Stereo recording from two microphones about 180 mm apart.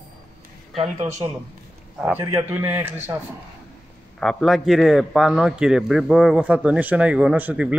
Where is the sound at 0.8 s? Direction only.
35° right (ahead or behind).